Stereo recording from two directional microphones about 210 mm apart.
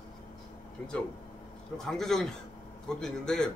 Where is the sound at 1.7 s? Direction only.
Centre (ahead or behind).